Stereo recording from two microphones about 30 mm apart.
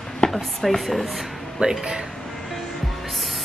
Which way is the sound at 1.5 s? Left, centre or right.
Right.